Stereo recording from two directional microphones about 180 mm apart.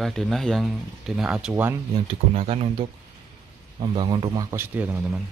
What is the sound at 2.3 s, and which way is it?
A man's voice, 35° right (ahead or behind).